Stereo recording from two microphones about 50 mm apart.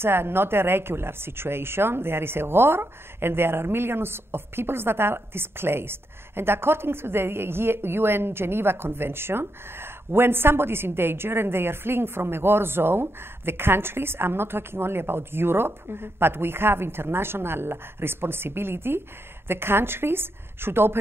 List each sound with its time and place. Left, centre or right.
0.0 s speech: right